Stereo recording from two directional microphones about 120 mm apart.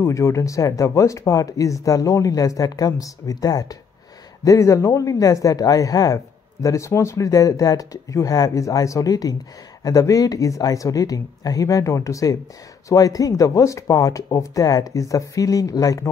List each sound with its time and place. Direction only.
0.0 s speech: 25° left (ahead or behind)